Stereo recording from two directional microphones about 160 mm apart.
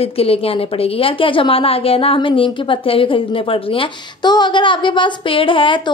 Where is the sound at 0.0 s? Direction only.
40° left (ahead or behind).